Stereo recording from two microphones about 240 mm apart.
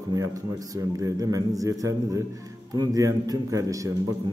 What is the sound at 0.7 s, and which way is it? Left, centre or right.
A man's voice, centre.